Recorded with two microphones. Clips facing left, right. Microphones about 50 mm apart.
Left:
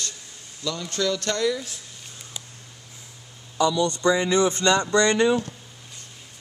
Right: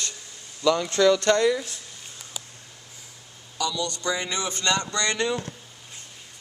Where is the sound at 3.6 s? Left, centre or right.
Left.